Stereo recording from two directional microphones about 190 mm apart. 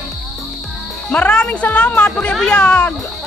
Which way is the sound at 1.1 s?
5° left (ahead or behind).